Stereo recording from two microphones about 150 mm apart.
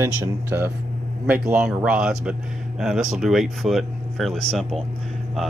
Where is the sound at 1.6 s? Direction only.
5° right (ahead or behind).